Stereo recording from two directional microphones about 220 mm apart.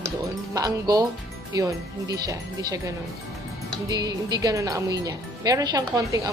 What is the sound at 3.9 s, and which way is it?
Speech, 20° right (ahead or behind).